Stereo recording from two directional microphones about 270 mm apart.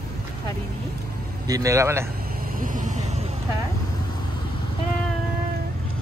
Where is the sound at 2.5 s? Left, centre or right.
Right.